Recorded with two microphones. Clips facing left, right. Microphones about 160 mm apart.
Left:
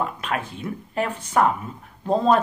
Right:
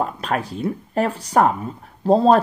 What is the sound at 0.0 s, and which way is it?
Speech, 35° right (ahead or behind).